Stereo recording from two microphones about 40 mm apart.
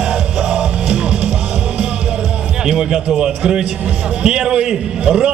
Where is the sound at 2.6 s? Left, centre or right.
Centre.